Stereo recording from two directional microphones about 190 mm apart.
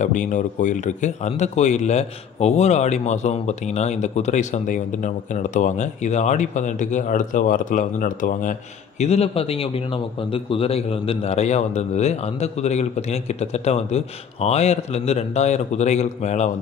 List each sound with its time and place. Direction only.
0.0 s speech: 40° left (ahead or behind)